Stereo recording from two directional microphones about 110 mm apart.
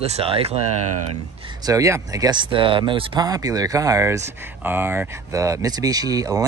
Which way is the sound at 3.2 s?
35° right (ahead or behind).